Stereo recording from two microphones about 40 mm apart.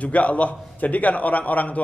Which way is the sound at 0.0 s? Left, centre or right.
Left.